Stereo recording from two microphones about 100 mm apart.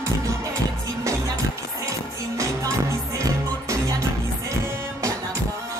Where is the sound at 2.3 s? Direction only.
30° right (ahead or behind).